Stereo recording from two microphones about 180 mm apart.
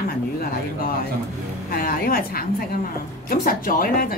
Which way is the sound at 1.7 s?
55° left (ahead or behind).